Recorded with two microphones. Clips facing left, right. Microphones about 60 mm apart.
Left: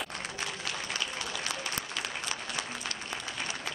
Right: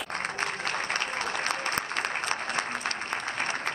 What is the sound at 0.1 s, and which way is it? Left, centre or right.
Applause, right.